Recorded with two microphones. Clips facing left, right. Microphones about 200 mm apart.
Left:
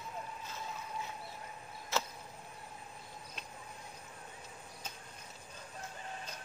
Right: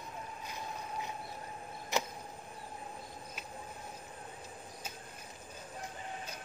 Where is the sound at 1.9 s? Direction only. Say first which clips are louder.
Right 2 dB; 15° right (ahead or behind).